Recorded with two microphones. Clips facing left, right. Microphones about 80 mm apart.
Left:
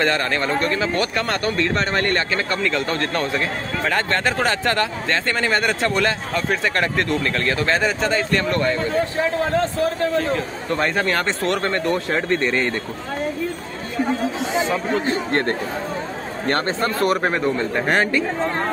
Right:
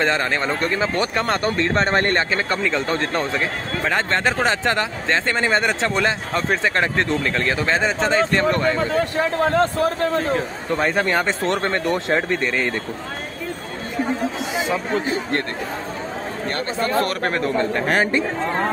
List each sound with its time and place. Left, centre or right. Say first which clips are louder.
0.0 s speech: even; right
9.2 s a man's voice: right 3 dB; right
10.7 s speech: right 1 dB; centre
11.4 s speech: even; right
12.3 s speech: left 1 dB; centre
14.4 s speech: left 2 dB; centre
17.0 s speech: left 3 dB; centre